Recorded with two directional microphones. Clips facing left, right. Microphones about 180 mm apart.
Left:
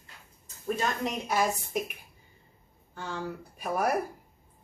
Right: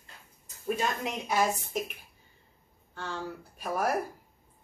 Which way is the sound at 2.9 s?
10° left (ahead or behind).